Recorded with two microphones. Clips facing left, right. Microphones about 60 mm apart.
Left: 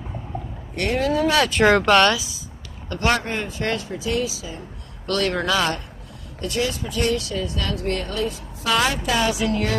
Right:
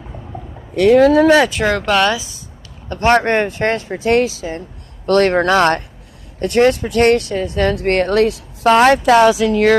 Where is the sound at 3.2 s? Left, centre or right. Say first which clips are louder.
Right 10 dB; right.